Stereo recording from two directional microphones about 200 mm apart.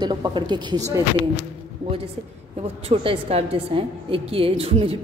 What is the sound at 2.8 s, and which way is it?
A woman's voice, 30° right (ahead or behind).